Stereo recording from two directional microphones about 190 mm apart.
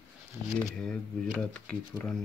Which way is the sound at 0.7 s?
Centre (ahead or behind).